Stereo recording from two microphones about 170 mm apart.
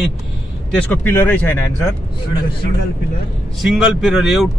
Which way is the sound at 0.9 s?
10° left (ahead or behind).